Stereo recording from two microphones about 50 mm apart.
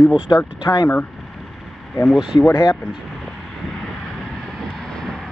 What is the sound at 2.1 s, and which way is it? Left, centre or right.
Speech, centre.